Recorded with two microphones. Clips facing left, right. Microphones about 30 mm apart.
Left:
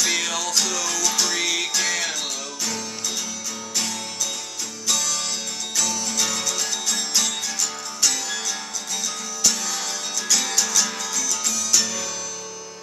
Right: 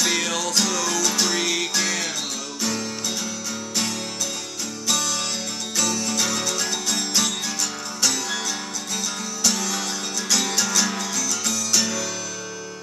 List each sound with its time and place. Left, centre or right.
0.0 s music: centre
4.8 s music: centre
9.4 s music: centre